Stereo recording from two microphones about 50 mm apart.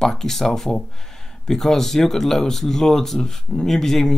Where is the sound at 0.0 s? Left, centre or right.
Centre.